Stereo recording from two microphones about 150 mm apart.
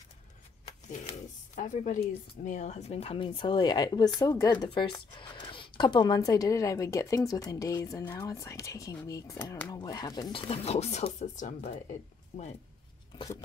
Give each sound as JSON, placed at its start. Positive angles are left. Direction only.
{"t": 0.8, "sound": "a woman's voice", "side_deg": 55}